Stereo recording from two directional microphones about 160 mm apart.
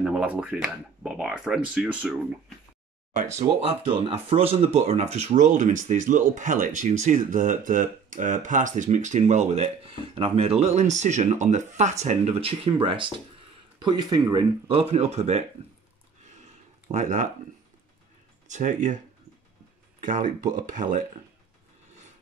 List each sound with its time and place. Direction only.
0.0 s speech: 5° right (ahead or behind)
3.3 s speech: 40° right (ahead or behind)
16.9 s speech: 50° right (ahead or behind)
18.5 s speech: 50° right (ahead or behind)
20.0 s speech: 55° right (ahead or behind)